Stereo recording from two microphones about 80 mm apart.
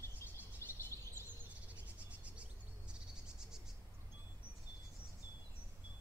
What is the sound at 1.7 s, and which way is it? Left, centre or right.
Cricket, centre.